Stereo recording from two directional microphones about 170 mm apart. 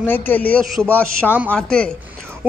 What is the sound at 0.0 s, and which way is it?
A man's voice, 10° left (ahead or behind).